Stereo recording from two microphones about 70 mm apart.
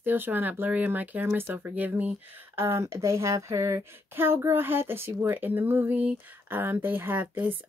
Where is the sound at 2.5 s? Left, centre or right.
Right.